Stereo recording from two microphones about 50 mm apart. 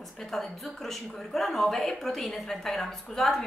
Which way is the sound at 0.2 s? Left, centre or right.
Centre.